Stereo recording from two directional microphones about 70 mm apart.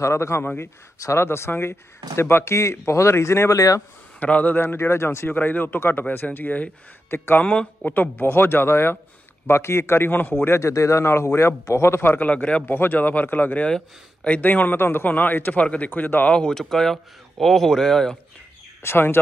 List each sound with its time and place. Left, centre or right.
0.0 s a man's voice: left
3.5 s speech: left
4.2 s speech: left
4.6 s a man's voice: left
12.1 s speech: left
16.3 s speech: centre
18.8 s speech: left